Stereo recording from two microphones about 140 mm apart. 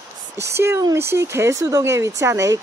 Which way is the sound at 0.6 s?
15° right (ahead or behind).